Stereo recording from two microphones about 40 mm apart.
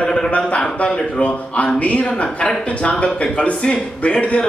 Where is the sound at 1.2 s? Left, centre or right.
Left.